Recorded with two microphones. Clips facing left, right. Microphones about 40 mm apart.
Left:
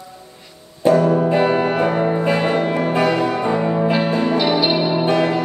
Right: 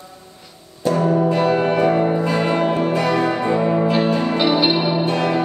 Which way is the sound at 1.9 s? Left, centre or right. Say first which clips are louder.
Right 1 dB; centre.